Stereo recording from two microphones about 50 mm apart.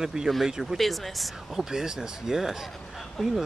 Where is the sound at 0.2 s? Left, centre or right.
Centre.